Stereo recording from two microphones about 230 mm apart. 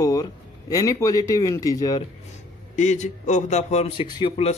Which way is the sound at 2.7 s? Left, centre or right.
Left.